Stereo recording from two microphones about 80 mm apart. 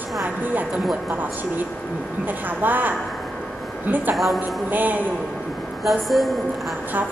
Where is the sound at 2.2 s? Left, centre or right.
Right.